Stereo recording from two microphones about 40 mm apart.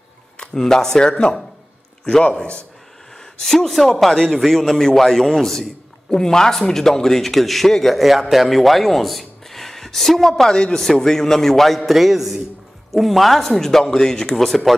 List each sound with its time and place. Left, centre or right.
0.4 s a man's voice: centre
8.0 s speech: centre
10.5 s a man's voice: centre
14.3 s speech: centre